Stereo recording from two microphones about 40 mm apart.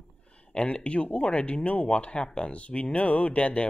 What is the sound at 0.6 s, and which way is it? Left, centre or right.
Speech, left.